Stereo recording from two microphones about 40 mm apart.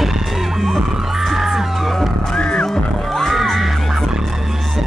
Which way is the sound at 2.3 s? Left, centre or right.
Left.